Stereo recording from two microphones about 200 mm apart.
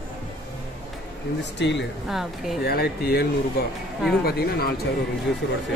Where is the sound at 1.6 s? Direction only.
60° left (ahead or behind).